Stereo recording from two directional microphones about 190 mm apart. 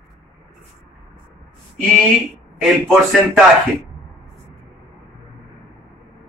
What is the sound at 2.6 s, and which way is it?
Speech, centre (ahead or behind).